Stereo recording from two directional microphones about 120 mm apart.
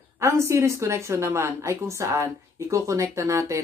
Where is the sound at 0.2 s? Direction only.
25° right (ahead or behind).